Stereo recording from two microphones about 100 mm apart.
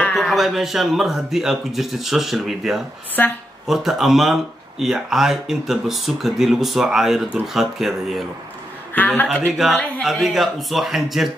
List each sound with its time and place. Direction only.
0.1 s speech: centre (ahead or behind)
3.2 s a man's voice: 15° left (ahead or behind)
3.6 s speech: 5° right (ahead or behind)
8.9 s a man's voice: 15° left (ahead or behind)
9.5 s speech: 5° right (ahead or behind)